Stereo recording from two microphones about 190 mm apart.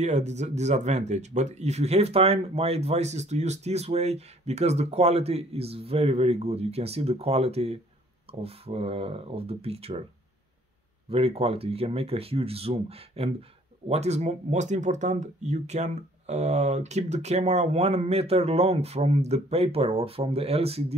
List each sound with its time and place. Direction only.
0.0 s speech: 35° right (ahead or behind)
11.1 s speech: 30° right (ahead or behind)